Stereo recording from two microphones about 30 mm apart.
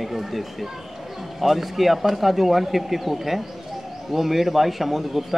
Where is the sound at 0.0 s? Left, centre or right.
Centre.